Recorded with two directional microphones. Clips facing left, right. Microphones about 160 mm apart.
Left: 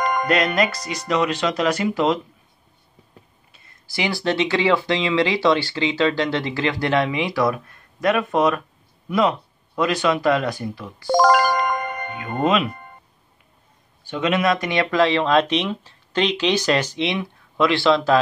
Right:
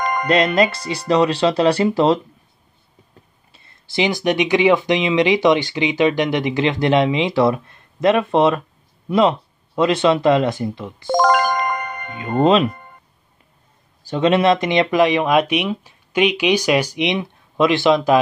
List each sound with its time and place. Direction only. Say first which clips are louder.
0.3 s speech: right 6 dB; 25° right (ahead or behind)
3.5 s speech: right 7 dB; 25° right (ahead or behind)
9.8 s speech: right 4 dB; 25° right (ahead or behind)
11.1 s music: even; centre (ahead or behind)
12.2 s speech: right 6 dB; 30° right (ahead or behind)
14.0 s speech: right 5 dB; 35° right (ahead or behind); by 18.1 s 15° right (ahead or behind)